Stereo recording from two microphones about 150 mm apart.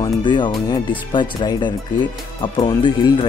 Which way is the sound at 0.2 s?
30° left (ahead or behind).